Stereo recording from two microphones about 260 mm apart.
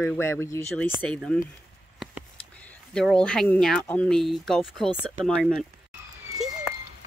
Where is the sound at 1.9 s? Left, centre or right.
Centre.